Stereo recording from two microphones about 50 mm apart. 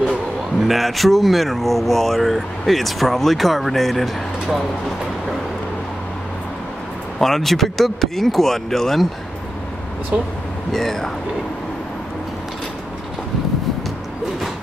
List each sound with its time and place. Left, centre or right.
0.6 s speech: centre
7.2 s speech: centre
10.1 s speech: right
10.7 s speech: centre